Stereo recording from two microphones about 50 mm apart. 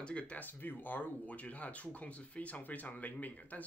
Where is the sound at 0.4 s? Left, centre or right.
Left.